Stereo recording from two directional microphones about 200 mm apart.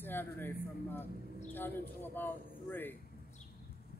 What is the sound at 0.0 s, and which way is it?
A man's voice, 10° left (ahead or behind).